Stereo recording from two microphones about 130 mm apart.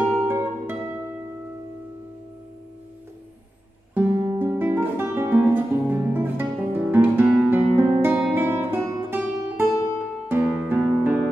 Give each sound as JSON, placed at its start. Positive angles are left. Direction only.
{"t": 0.0, "sound": "music", "side_deg": -20}
{"t": 3.9, "sound": "music", "side_deg": -20}
{"t": 4.4, "sound": "guitar", "side_deg": -15}
{"t": 10.2, "sound": "music", "side_deg": -15}